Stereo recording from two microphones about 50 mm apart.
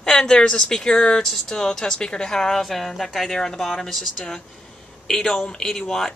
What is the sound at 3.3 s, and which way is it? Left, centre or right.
Speech, centre.